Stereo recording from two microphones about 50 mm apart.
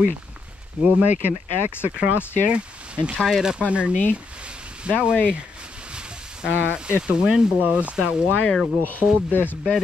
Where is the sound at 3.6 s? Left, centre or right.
Right.